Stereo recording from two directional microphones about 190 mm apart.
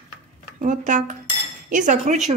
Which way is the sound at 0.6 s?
40° right (ahead or behind).